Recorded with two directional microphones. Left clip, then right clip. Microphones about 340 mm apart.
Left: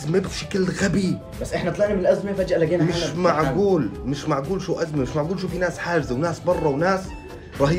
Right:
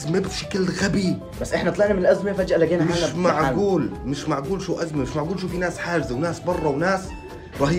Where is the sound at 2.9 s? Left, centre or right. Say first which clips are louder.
Even; centre.